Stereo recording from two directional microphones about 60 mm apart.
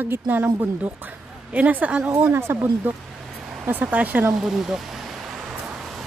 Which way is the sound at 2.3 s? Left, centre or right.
Right.